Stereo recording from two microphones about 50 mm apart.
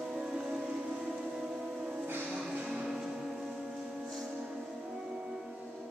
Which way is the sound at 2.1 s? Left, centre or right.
Right.